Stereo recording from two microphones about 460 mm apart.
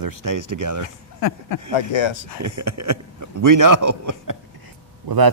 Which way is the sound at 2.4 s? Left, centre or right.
Right.